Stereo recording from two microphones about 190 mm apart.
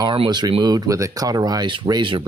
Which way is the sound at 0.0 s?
25° right (ahead or behind).